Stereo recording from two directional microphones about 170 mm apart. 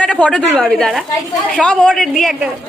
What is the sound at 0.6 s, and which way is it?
A man's voice, centre (ahead or behind).